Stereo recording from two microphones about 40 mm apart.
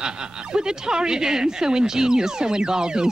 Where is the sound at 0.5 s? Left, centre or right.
Centre.